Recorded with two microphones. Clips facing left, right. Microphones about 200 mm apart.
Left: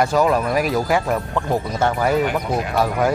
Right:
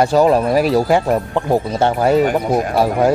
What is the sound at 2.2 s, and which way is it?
Speech, 45° right (ahead or behind).